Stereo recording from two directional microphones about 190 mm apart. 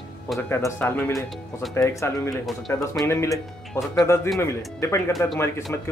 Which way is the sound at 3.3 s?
Centre (ahead or behind).